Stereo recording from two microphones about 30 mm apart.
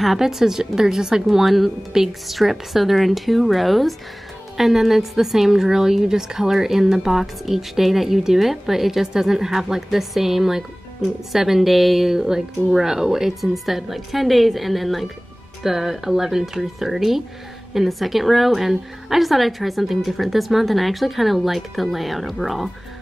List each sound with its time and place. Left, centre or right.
0.2 s a woman's voice: centre
4.6 s a woman's voice: centre
15.6 s a woman's voice: centre